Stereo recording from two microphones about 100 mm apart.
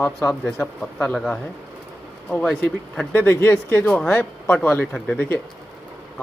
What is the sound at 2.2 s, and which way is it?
Speech, 10° left (ahead or behind).